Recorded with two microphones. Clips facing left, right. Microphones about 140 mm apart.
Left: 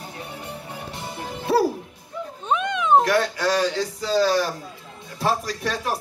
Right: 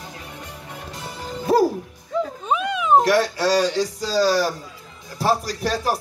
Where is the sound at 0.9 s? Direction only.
25° left (ahead or behind).